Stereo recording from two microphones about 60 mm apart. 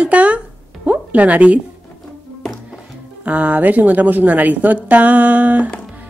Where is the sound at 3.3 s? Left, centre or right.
Right.